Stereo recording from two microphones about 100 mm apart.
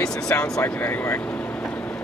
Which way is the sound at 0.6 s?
20° left (ahead or behind).